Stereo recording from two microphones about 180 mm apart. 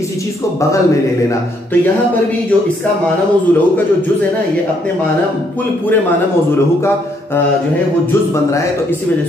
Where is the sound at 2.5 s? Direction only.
10° left (ahead or behind).